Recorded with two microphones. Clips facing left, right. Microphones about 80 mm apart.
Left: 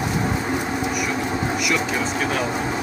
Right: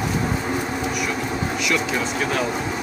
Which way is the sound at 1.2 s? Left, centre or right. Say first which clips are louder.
Left 2 dB; centre.